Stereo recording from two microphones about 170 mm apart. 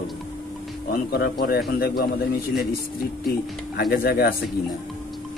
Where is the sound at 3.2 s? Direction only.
60° left (ahead or behind).